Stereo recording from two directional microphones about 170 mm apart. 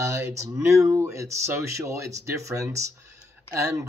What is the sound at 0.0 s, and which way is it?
Speech, 15° right (ahead or behind).